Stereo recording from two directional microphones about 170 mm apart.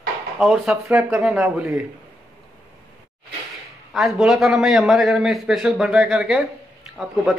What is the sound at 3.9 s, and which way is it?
A man's voice, centre (ahead or behind).